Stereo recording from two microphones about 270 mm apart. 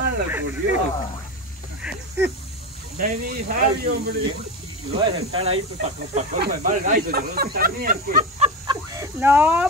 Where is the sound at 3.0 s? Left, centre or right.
Right.